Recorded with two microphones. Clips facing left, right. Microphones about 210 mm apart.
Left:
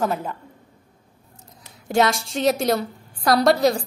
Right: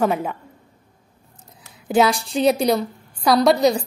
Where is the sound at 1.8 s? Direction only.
Centre (ahead or behind).